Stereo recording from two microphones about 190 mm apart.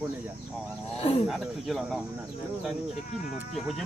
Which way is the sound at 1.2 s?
Centre (ahead or behind).